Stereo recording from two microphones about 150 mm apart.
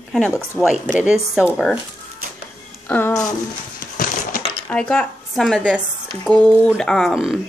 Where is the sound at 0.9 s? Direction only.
5° right (ahead or behind).